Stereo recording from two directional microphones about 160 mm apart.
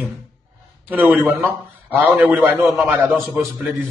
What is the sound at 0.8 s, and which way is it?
A man's voice, 10° right (ahead or behind).